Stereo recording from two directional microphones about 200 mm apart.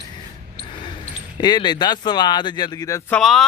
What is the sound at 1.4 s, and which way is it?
Speech, 20° left (ahead or behind).